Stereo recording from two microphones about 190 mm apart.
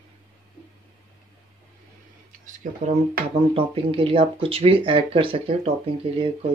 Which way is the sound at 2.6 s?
40° right (ahead or behind).